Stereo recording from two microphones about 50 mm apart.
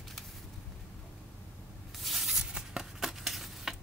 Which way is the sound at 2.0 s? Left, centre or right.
Centre.